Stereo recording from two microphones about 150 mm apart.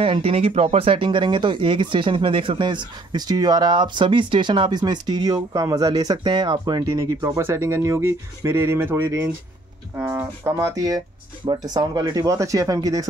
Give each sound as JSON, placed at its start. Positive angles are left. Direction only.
{"t": 0.0, "sound": "speech", "side_deg": -40}